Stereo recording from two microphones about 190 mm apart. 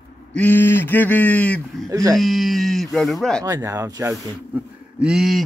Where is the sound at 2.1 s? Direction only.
Centre (ahead or behind).